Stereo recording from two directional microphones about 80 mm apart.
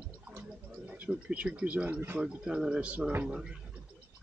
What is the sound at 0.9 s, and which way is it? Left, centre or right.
Speech, centre.